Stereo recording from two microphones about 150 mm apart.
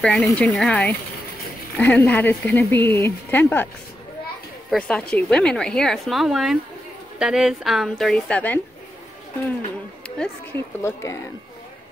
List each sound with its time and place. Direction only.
0.0 s a woman's voice: 5° left (ahead or behind)
4.6 s a woman's voice: 5° left (ahead or behind)
10.0 s a sound: 5° left (ahead or behind)
10.8 s speech: 20° left (ahead or behind)